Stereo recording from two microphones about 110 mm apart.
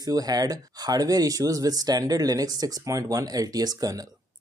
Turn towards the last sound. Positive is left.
turn(degrees=-35)  # may be behind; listen again after turning